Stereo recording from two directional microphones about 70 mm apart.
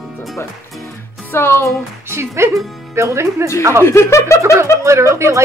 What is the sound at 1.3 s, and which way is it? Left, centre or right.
Speech, left.